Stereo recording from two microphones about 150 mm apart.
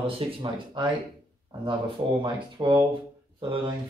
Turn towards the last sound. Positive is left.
turn(degrees=-35)  # may be behind; listen again after turning